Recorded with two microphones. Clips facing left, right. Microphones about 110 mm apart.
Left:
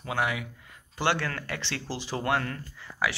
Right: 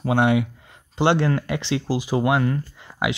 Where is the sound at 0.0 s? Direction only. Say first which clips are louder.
Right 10 dB; 25° right (ahead or behind).